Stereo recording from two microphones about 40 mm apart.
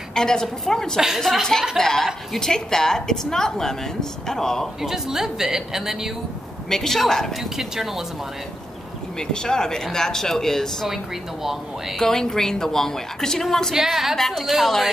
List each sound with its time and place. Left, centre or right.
0.1 s a woman's voice: centre
4.8 s a woman's voice: centre
6.7 s a woman's voice: centre
7.3 s a woman's voice: centre
9.3 s a woman's voice: centre
12.0 s a woman's voice: centre
13.7 s a woman's voice: centre
14.1 s a woman's voice: centre